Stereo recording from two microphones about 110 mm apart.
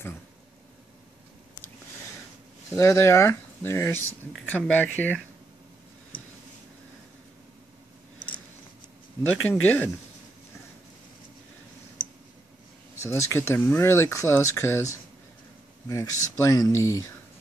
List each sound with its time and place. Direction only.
2.7 s speech: 25° left (ahead or behind)
4.5 s speech: 10° left (ahead or behind)
9.5 s speech: 15° left (ahead or behind)
12.9 s speech: 25° left (ahead or behind)